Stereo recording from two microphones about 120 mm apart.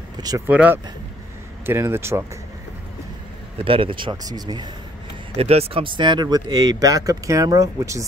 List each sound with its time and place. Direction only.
0.5 s speech: 10° right (ahead or behind)
3.5 s speech: 50° right (ahead or behind)
5.3 s speech: 55° right (ahead or behind); by 8.0 s 25° right (ahead or behind)